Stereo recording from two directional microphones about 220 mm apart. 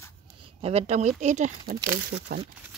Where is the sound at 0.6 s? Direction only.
30° right (ahead or behind); by 2.5 s 45° right (ahead or behind).